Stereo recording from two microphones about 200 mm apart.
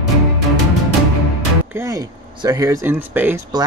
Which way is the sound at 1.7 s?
15° right (ahead or behind).